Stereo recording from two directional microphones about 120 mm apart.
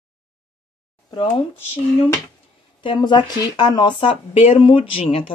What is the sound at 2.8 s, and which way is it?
Speech, 40° left (ahead or behind).